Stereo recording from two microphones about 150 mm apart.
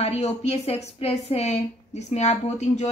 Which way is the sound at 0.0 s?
45° left (ahead or behind).